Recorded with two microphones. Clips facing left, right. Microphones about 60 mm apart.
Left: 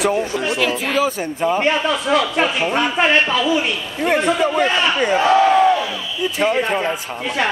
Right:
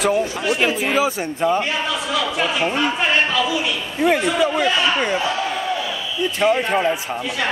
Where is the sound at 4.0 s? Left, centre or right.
Centre.